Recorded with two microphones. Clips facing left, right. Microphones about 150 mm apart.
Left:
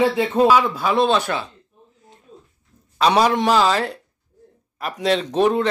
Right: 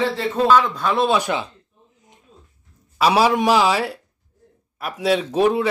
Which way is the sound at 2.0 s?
15° right (ahead or behind).